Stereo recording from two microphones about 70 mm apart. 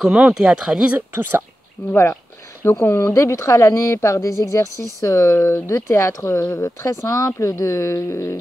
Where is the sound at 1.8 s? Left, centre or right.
Centre.